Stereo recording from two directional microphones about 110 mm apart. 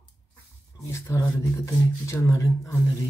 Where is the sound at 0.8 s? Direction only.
25° left (ahead or behind).